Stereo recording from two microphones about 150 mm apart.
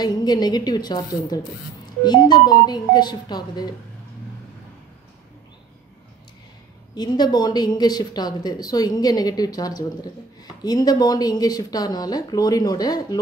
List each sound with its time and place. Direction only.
0.0 s a woman's voice: 25° left (ahead or behind)
7.0 s a woman's voice: 25° left (ahead or behind)